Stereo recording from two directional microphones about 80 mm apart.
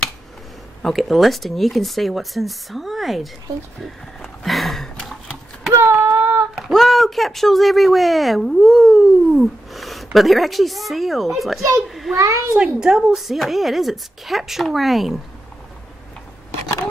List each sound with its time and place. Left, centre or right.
0.8 s a woman's voice: centre
3.8 s a sound: centre
5.9 s child singing: right
6.5 s speech: centre
11.9 s a sound: centre
12.2 s a child's voice: right
12.5 s a woman's voice: centre